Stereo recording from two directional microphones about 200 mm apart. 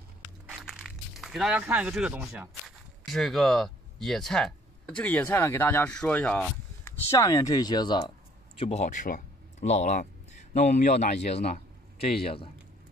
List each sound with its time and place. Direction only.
0.5 s a sound: 5° right (ahead or behind)
3.1 s speech: centre (ahead or behind); by 8.1 s 20° left (ahead or behind)
8.5 s speech: 30° left (ahead or behind)